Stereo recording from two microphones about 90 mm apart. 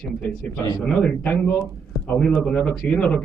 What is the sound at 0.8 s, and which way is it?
Speech, 10° left (ahead or behind).